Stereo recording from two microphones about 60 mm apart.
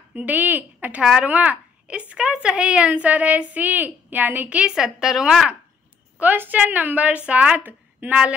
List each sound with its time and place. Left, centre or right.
0.1 s a woman's voice: right
4.7 s a woman's voice: centre
6.1 s a woman's voice: right